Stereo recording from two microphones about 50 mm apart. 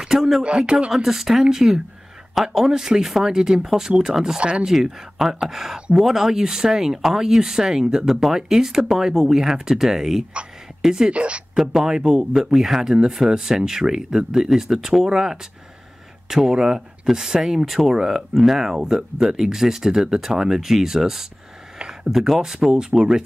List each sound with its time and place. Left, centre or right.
0.0 s a sound: centre
0.4 s speech: right
0.9 s speech: centre
4.4 s speech: right
4.6 s speech: centre
11.1 s speech: right
11.5 s speech: centre
12.5 s speech: centre
16.4 s speech: centre